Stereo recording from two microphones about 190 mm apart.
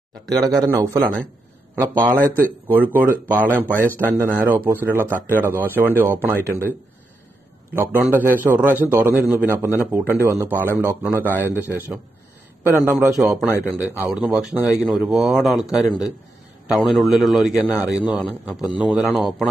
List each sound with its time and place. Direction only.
0.4 s a man's voice: 15° right (ahead or behind)
7.7 s a man's voice: 10° right (ahead or behind)
12.6 s a man's voice: 10° right (ahead or behind)
14.5 s speech: 15° left (ahead or behind)
14.8 s a man's voice: 5° right (ahead or behind)
16.7 s a man's voice: centre (ahead or behind)